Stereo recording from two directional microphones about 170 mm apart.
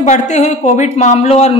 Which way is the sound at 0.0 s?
45° left (ahead or behind).